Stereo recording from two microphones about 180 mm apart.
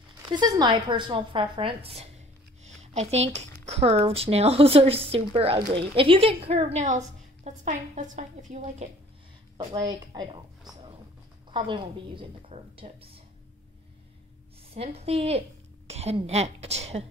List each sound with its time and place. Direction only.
0.3 s a woman's voice: 25° right (ahead or behind); by 8.8 s 40° right (ahead or behind)
9.8 s a woman's voice: 20° right (ahead or behind)
11.5 s speech: 25° right (ahead or behind)
14.7 s speech: 35° right (ahead or behind)